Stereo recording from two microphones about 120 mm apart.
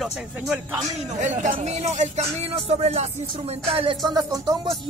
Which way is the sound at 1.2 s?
90° right.